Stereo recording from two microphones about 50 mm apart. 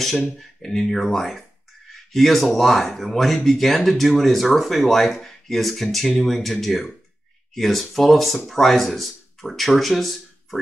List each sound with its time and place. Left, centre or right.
0.4 s speech: centre